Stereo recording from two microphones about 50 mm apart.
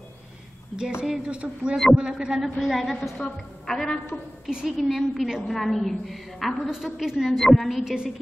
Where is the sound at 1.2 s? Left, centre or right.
Right; by 7.3 s centre.